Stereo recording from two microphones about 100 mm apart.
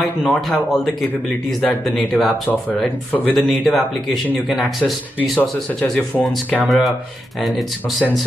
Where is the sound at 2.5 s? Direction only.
15° left (ahead or behind).